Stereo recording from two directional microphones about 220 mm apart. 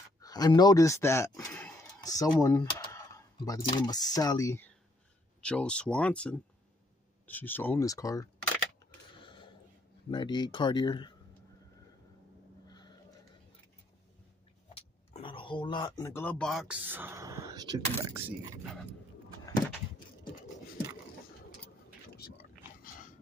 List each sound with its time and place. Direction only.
0.2 s speech: 15° left (ahead or behind)
9.2 s a sound: 20° left (ahead or behind)
10.1 s speech: 20° left (ahead or behind)
12.6 s a sound: 20° left (ahead or behind)
14.7 s speech: 25° left (ahead or behind); by 18.5 s 15° right (ahead or behind)
22.8 s biting: 40° left (ahead or behind)